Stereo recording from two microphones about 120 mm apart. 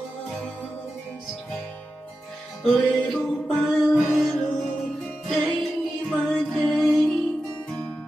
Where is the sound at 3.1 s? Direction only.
5° left (ahead or behind).